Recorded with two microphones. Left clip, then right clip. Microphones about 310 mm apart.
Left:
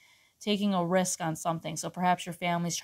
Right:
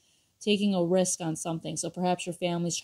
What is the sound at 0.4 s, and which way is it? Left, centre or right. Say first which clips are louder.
Speech: right 3 dB; centre.